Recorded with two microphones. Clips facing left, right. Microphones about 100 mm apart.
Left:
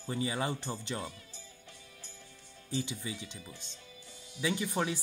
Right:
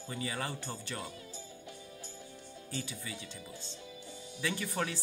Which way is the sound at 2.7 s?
20° left (ahead or behind).